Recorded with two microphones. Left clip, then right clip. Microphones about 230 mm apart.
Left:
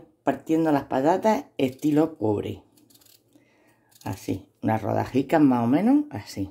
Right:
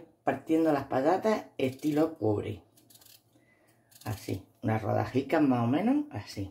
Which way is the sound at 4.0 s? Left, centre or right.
Left.